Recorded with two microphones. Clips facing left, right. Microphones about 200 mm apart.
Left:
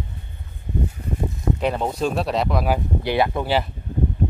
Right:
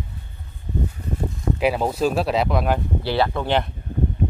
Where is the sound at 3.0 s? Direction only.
15° left (ahead or behind).